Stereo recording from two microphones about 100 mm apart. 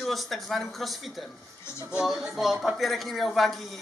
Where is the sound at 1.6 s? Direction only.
25° left (ahead or behind).